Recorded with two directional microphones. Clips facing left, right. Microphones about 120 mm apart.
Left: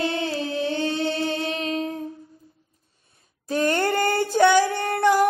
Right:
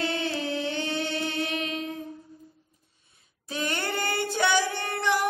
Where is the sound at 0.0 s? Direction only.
25° left (ahead or behind).